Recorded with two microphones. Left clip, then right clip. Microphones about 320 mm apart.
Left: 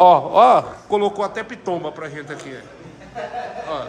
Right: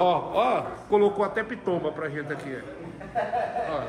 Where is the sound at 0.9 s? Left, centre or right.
Centre.